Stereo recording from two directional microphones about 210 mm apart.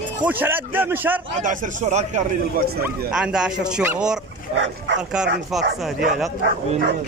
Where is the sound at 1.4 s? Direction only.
35° right (ahead or behind).